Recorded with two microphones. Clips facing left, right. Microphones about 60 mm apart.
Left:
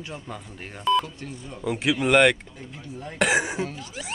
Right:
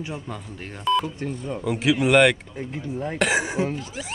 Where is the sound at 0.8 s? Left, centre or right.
Centre.